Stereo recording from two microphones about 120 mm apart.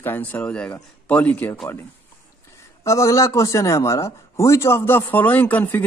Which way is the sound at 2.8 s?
25° left (ahead or behind).